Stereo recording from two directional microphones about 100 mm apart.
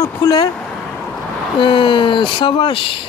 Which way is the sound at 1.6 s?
60° left (ahead or behind).